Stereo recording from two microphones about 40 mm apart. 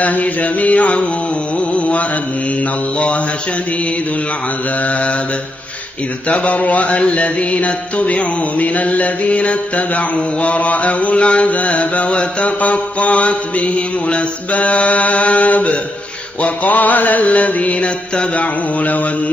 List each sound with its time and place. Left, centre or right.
0.0 s music: left
1.7 s mantra: left
6.2 s music: left